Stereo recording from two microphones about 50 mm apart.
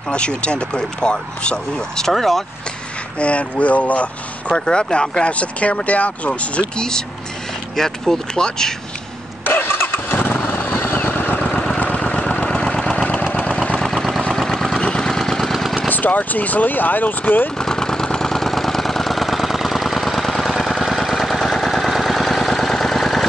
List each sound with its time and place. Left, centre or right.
0.1 s speech: left
2.0 s speech: centre
3.2 s speech: left
6.8 s speech: centre
9.4 s vehicle: left
11.3 s vehicle: left
13.8 s vehicle: centre
15.9 s speech: left
17.6 s engine: centre